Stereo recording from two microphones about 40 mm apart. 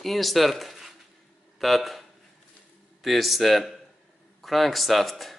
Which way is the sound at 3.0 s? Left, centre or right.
Centre.